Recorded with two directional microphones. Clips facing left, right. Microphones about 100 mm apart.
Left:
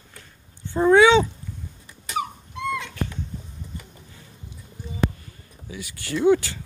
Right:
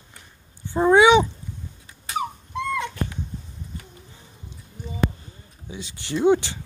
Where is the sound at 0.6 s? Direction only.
15° right (ahead or behind).